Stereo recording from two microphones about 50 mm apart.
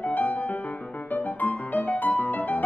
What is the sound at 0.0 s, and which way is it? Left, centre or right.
Music, left.